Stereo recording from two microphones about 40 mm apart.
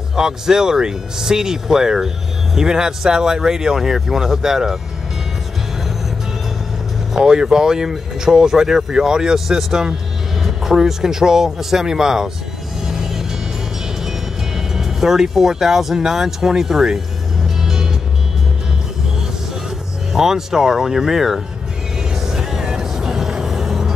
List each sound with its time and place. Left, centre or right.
0.1 s speech: centre
7.2 s speech: centre
12.8 s music: centre
14.7 s speech: centre
17.6 s music: centre
20.1 s speech: centre
22.3 s vehicle: centre